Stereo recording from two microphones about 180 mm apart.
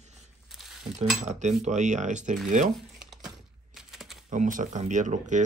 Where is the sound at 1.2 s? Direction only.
40° right (ahead or behind).